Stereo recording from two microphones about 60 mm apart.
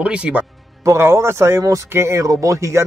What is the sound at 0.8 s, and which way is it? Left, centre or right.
Speech, right.